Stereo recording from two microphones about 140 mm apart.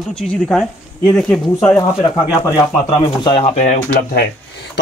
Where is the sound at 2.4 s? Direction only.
25° left (ahead or behind).